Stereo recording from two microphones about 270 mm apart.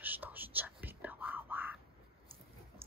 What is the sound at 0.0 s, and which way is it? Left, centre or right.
Whispering, centre.